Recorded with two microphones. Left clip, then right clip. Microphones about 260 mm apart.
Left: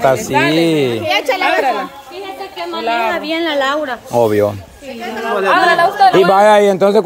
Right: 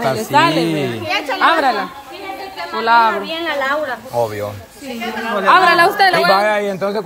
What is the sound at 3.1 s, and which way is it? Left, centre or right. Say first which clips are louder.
A woman's voice: left 2 dB; left.